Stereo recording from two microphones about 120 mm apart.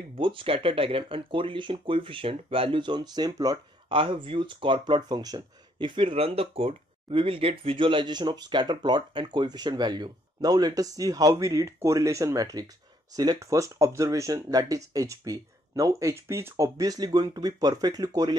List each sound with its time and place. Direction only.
0.2 s speech: 45° right (ahead or behind)
3.9 s speech: 45° right (ahead or behind); by 18.3 s 30° right (ahead or behind)